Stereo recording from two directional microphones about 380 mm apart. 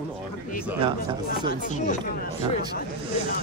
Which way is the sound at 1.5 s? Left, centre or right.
Centre.